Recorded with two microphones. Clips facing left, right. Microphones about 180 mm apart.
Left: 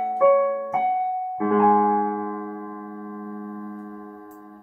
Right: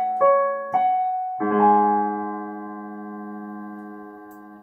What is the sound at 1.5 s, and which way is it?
Music, 30° right (ahead or behind).